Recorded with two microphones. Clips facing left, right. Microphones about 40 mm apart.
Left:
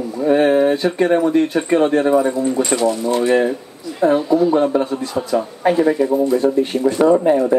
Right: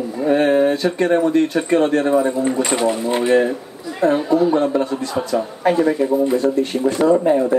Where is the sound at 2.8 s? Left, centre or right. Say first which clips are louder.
Left 1 dB; right.